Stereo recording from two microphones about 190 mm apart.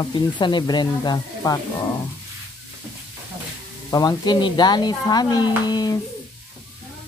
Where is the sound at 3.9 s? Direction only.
20° left (ahead or behind).